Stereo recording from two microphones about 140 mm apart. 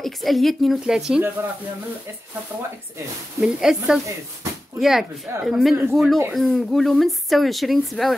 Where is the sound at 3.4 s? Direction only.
5° right (ahead or behind).